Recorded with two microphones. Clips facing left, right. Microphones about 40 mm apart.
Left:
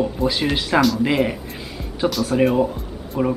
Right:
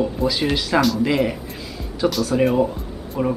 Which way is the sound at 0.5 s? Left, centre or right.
Centre.